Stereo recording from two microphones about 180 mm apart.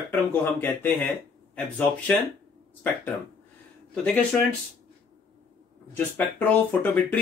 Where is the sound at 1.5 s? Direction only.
10° left (ahead or behind).